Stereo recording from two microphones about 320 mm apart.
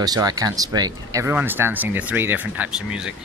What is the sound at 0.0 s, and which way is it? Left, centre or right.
Speech, centre.